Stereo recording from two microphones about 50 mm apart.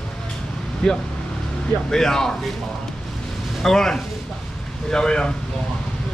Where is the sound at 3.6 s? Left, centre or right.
Centre.